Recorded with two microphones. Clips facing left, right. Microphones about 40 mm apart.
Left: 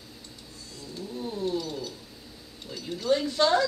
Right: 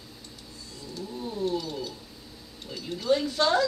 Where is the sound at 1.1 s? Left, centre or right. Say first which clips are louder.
Right 1 dB; centre.